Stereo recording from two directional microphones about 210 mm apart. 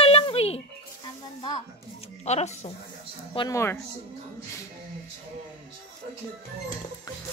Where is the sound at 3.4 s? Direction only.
15° left (ahead or behind).